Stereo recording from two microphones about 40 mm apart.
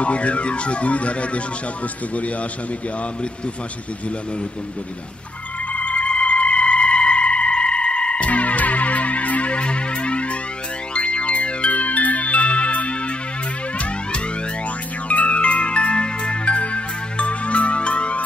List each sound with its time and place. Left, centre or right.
0.0 s music: left
5.7 s music: left
15.0 s music: left